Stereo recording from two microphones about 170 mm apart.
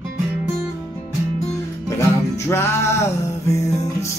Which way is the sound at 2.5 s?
15° left (ahead or behind).